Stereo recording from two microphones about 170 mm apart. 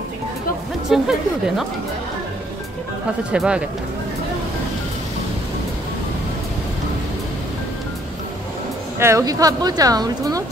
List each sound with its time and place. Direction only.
0.8 s speech: 5° right (ahead or behind)
3.3 s speech: 5° right (ahead or behind)
9.0 s speech: 20° right (ahead or behind)